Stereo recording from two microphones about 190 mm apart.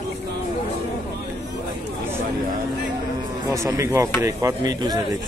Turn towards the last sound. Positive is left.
turn(degrees=-20)  # may be behind; listen again after turning